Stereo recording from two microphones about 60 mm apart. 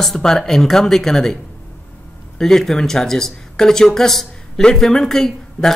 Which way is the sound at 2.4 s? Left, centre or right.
Centre.